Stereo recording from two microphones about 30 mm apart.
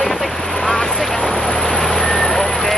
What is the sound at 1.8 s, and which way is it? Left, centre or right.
Vehicle, centre.